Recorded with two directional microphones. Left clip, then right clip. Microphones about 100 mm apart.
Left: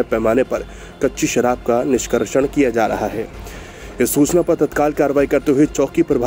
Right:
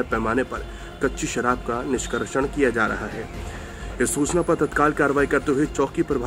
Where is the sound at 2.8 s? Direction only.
40° left (ahead or behind).